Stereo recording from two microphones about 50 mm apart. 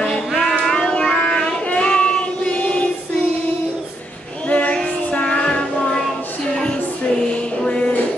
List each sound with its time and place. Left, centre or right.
0.4 s child singing: centre
4.5 s child singing: left
5.1 s music: left